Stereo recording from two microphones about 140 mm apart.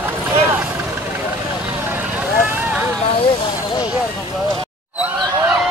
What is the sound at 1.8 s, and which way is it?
Vehicle, 10° right (ahead or behind).